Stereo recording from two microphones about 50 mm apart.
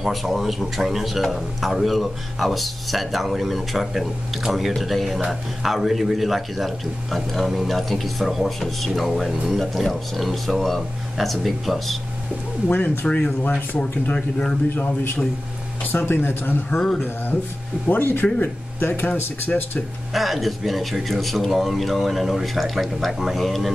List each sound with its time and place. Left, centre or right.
0.0 s speech: centre
12.6 s speech: left
15.8 s speech: left
16.7 s speech: centre
17.8 s speech: left
20.2 s speech: centre